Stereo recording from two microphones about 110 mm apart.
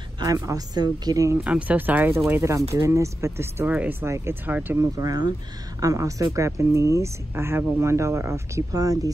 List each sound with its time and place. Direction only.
0.2 s speech: 35° right (ahead or behind)
1.4 s speech: 15° right (ahead or behind)
4.7 s speech: 35° right (ahead or behind)